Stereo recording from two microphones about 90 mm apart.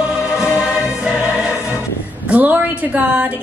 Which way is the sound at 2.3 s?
15° right (ahead or behind).